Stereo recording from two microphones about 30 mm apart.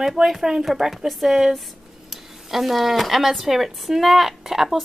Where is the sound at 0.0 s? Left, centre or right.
Centre.